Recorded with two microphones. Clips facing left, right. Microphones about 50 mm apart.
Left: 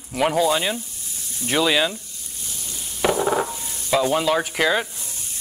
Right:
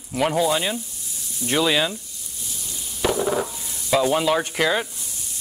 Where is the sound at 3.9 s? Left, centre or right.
Centre.